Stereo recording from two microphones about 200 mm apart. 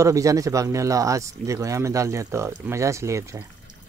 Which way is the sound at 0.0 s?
15° right (ahead or behind).